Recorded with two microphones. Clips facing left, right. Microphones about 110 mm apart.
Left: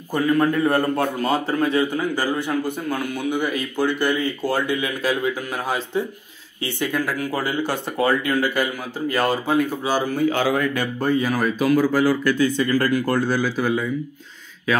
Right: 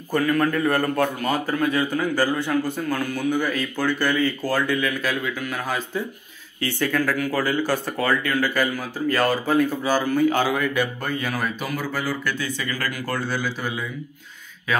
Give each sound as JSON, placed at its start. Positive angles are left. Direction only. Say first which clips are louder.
{"t": 0.1, "sound": "a man's voice", "louder": "left 2 dB", "side_deg": 20}
{"t": 11.2, "sound": "speech", "louder": "left 7 dB", "side_deg": 40}
{"t": 11.8, "sound": "speech", "louder": "left 9 dB", "side_deg": 10}
{"t": 12.3, "sound": "speech", "louder": "left 9 dB", "side_deg": 35}
{"t": 13.2, "sound": "speech", "louder": "left 5 dB", "side_deg": 40}
{"t": 13.6, "sound": "speech", "louder": "left 7 dB", "side_deg": 0}